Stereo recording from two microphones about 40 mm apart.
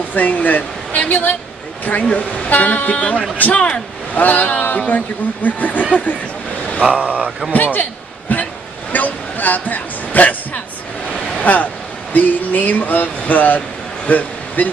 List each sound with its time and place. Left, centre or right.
0.1 s speech: left
6.8 s speech: right
7.5 s speech: left
8.9 s a sound: left
11.3 s speech: left
14.0 s a sound: left